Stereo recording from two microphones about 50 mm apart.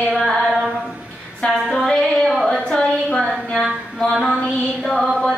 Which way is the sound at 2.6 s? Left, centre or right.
Centre.